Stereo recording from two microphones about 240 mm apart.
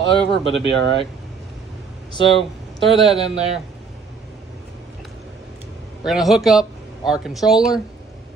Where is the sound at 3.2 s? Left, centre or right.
Right.